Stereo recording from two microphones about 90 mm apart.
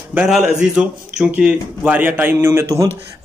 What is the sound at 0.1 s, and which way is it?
A man's voice, 20° right (ahead or behind).